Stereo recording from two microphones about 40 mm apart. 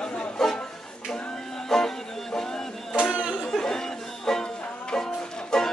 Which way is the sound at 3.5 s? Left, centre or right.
Centre.